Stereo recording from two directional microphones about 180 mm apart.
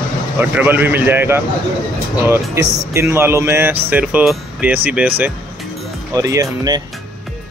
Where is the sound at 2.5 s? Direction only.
15° right (ahead or behind).